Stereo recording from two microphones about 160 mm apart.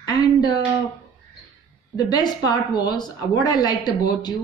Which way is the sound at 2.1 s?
25° left (ahead or behind).